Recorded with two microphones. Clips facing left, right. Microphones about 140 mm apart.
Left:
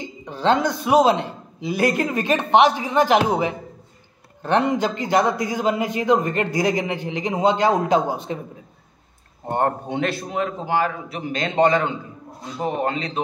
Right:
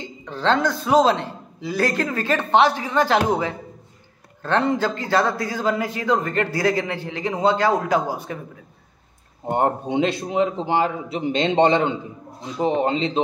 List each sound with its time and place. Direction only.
0.0 s a man's voice: 15° left (ahead or behind)
9.5 s a man's voice: 15° right (ahead or behind)